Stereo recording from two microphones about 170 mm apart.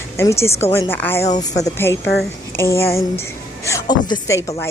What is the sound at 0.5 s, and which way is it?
Speech, 35° left (ahead or behind).